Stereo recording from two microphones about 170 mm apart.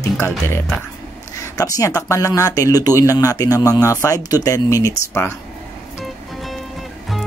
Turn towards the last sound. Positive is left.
turn(degrees=15)  # may be behind; listen again after turning